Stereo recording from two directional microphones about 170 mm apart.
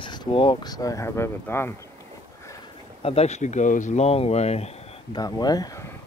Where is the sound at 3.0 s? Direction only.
35° left (ahead or behind).